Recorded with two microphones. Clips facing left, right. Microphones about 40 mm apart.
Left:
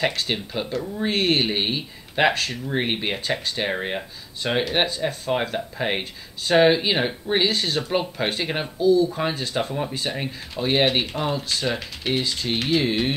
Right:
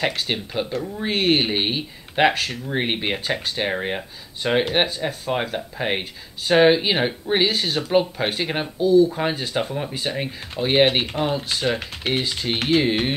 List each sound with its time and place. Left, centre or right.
0.0 s speech: centre
8.7 s speech: centre